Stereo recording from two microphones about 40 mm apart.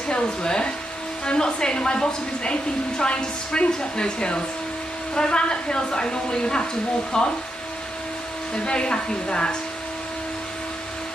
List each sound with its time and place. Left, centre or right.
0.1 s a woman's voice: left
8.6 s a woman's voice: left